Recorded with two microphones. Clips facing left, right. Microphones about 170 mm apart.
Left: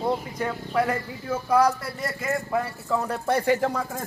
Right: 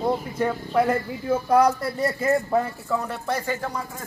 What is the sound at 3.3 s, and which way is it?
Speech, 60° left (ahead or behind).